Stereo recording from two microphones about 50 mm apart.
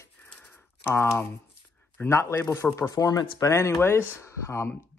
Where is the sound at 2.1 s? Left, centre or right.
Left.